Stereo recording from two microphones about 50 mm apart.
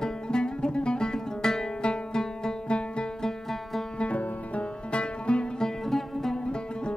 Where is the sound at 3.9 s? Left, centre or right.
Left; by 6.3 s centre.